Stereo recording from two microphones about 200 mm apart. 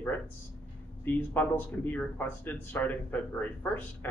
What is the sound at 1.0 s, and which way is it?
Speech, 10° left (ahead or behind).